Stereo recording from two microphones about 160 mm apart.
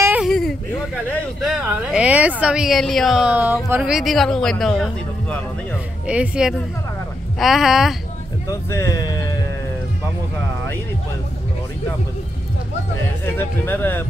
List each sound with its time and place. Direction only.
0.2 s a sound: centre (ahead or behind)
1.5 s a woman's voice: 5° right (ahead or behind)
8.5 s speech: 20° left (ahead or behind)
13.4 s speech: 15° left (ahead or behind)